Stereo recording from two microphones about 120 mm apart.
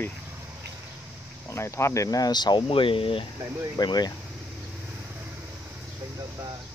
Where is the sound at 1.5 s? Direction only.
20° left (ahead or behind); by 3.3 s 50° left (ahead or behind).